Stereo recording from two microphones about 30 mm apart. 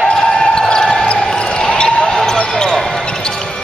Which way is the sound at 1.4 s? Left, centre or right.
Left.